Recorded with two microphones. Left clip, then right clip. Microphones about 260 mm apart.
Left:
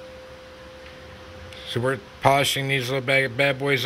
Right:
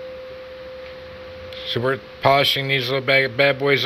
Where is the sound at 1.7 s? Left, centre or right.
Centre.